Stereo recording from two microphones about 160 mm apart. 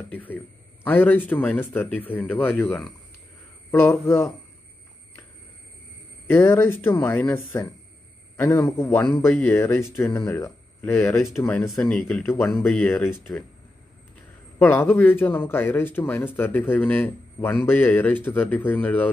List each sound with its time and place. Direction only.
0.1 s speech: 10° left (ahead or behind)
6.2 s speech: 15° left (ahead or behind)
11.8 s speech: centre (ahead or behind)
12.3 s speech: 15° left (ahead or behind)
12.6 s speech: 5° left (ahead or behind)
14.6 s speech: 10° left (ahead or behind)